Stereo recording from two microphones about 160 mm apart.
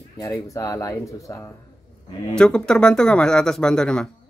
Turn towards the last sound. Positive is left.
turn(degrees=5)  # may be behind; listen again after turning